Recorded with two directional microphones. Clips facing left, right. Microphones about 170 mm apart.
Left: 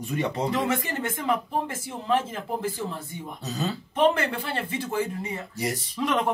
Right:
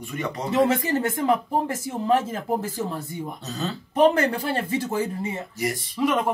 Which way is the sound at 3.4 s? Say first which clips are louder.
Left 3 dB; 10° left (ahead or behind).